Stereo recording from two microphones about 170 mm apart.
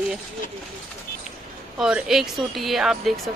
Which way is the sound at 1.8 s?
5° right (ahead or behind).